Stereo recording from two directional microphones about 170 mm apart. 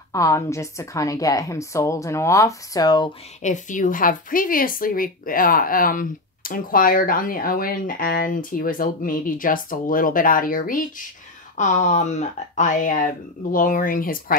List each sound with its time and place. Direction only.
0.1 s a woman's voice: 20° left (ahead or behind)
3.4 s a woman's voice: 45° left (ahead or behind)